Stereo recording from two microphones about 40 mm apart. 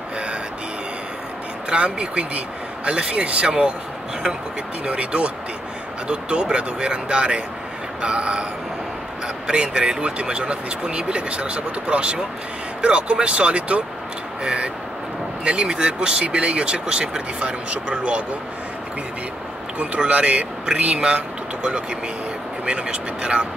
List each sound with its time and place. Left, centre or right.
1.7 s speech: right
4.8 s speech: right
9.5 s speech: right
20.1 s speech: right
22.7 s speech: right